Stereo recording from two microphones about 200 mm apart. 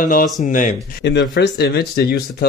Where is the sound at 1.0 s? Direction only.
55° left (ahead or behind).